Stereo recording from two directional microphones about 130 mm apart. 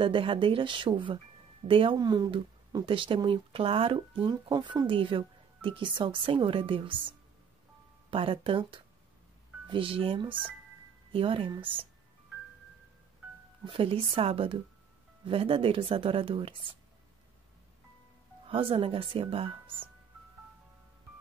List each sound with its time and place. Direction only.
0.0 s speech: 45° right (ahead or behind)
4.3 s speech: 30° right (ahead or behind)
13.7 s speech: 45° right (ahead or behind)
18.5 s speech: 45° right (ahead or behind)